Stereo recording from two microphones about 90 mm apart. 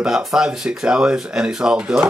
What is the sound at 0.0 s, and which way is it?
Speech, 5° right (ahead or behind).